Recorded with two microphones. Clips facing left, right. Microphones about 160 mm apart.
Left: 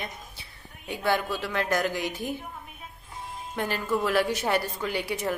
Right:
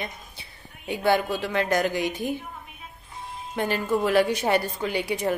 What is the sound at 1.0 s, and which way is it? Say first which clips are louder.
Speech: right 4 dB; 25° right (ahead or behind).